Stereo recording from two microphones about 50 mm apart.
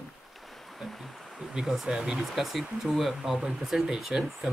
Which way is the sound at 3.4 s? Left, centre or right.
Centre.